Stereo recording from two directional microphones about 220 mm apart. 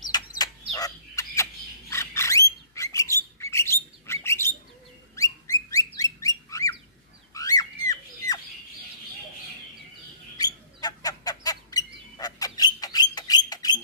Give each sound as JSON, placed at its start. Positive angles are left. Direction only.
{"t": 0.0, "sound": "bird", "side_deg": 20}
{"t": 7.3, "sound": "fowl", "side_deg": 15}
{"t": 10.3, "sound": "bird", "side_deg": 15}